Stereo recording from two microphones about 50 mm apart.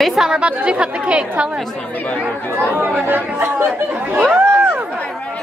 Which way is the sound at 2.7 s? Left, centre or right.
Right.